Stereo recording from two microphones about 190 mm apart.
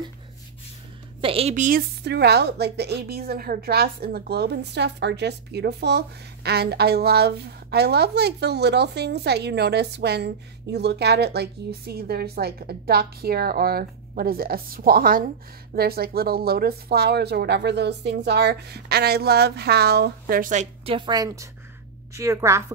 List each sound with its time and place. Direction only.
1.2 s a woman's voice: 30° right (ahead or behind)
2.0 s a woman's voice: 60° right (ahead or behind)
20.8 s a woman's voice: 25° right (ahead or behind)